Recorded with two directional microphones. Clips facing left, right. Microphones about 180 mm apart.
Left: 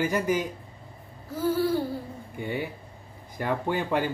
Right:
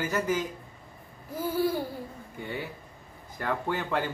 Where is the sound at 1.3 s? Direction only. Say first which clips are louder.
Left 3 dB; 10° right (ahead or behind).